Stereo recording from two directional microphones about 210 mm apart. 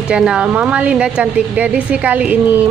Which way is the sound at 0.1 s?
5° right (ahead or behind).